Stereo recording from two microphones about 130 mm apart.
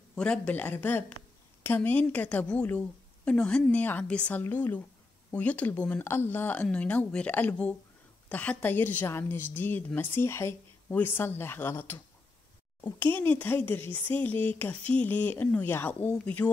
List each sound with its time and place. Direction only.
0.1 s a woman's voice: 10° left (ahead or behind)
13.0 s a woman's voice: 15° left (ahead or behind)